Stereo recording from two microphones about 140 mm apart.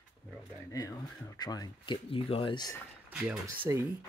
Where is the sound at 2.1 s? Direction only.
40° left (ahead or behind).